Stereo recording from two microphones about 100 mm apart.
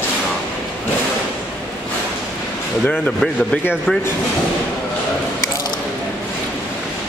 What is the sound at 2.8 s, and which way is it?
Speech, 10° left (ahead or behind).